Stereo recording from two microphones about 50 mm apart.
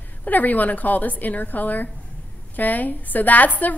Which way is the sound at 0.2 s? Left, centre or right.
Left.